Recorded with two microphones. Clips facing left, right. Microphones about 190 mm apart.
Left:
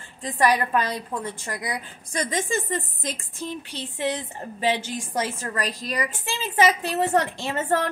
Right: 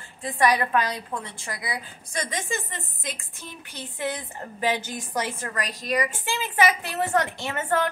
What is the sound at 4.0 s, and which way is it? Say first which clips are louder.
A woman's voice: left 3 dB; 25° left (ahead or behind).